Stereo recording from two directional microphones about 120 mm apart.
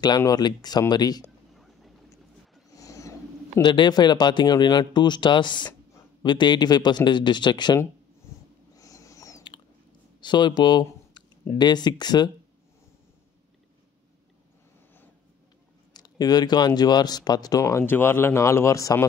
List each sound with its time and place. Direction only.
0.2 s speech: 35° left (ahead or behind)
1.5 s vehicle: centre (ahead or behind)
2.7 s a sound: 25° left (ahead or behind)
3.6 s speech: 40° left (ahead or behind)
8.7 s a sound: 30° left (ahead or behind)
10.2 s speech: 40° left (ahead or behind)
15.9 s speech: 35° left (ahead or behind)